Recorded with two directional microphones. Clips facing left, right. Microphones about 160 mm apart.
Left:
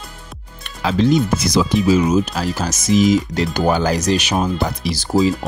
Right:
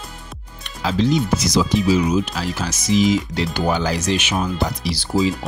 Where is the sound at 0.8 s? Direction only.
50° left (ahead or behind).